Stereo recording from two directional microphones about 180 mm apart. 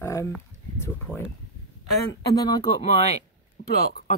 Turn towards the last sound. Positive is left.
turn(degrees=50)  # may be behind; listen again after turning